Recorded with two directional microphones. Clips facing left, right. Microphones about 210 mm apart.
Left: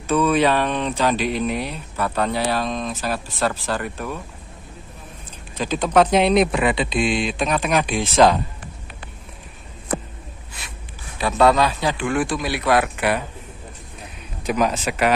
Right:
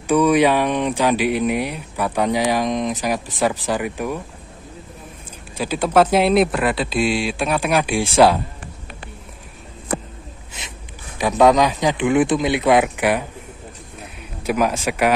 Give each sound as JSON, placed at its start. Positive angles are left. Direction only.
{"t": 0.0, "sound": "speech", "side_deg": -15}
{"t": 5.6, "sound": "speech", "side_deg": -10}
{"t": 11.1, "sound": "speech", "side_deg": -15}
{"t": 14.4, "sound": "speech", "side_deg": -10}